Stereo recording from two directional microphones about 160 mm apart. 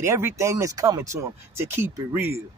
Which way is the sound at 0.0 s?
15° right (ahead or behind).